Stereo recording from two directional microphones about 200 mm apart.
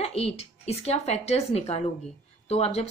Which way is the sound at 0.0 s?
30° left (ahead or behind).